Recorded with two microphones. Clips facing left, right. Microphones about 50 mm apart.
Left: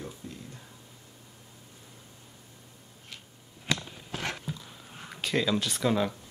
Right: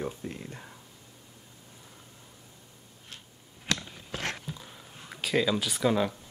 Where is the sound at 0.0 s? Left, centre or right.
Right.